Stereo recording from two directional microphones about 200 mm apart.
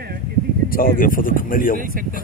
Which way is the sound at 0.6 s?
45° left (ahead or behind).